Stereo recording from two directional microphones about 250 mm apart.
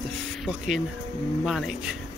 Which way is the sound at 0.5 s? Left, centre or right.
Centre.